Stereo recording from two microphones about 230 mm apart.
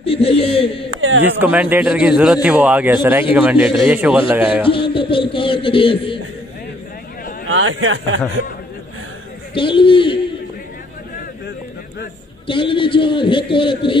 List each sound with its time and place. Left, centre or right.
0.0 s speech: left
0.8 s a sound: right
1.2 s a man's voice: centre
4.6 s a man's voice: left
7.4 s speech: right
9.6 s a man's voice: left
12.4 s a man's voice: left